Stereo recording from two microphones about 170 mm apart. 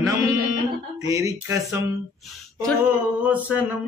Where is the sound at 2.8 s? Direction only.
10° right (ahead or behind).